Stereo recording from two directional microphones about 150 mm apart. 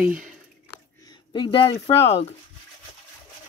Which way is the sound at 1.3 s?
35° left (ahead or behind).